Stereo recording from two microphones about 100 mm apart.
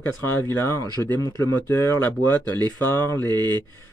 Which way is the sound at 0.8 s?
40° right (ahead or behind).